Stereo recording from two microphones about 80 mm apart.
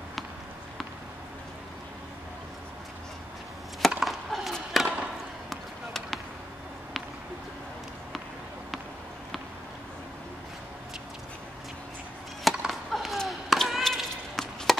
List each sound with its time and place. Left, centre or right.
4.0 s skateboard: centre
4.8 s chop: centre
5.5 s basketball bounce: centre
12.4 s a sound: centre